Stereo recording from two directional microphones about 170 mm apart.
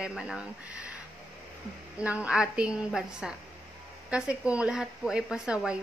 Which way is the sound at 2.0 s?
5° right (ahead or behind).